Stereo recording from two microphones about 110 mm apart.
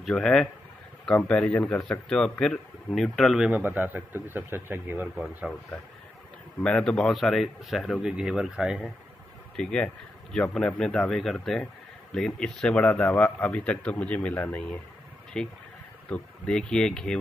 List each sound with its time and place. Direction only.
0.0 s a man's voice: 5° left (ahead or behind)
3.4 s speech: 15° right (ahead or behind)
5.0 s a man's voice: centre (ahead or behind)
6.6 s a man's voice: 5° left (ahead or behind)
9.6 s a man's voice: 10° left (ahead or behind)